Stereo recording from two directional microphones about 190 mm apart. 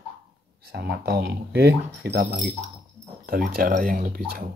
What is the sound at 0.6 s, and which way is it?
Speech, 60° right (ahead or behind).